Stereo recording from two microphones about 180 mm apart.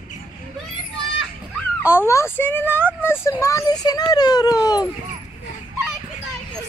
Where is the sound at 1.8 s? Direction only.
15° left (ahead or behind).